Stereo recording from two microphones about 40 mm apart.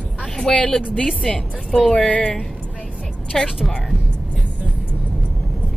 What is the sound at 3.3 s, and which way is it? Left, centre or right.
Speech, centre.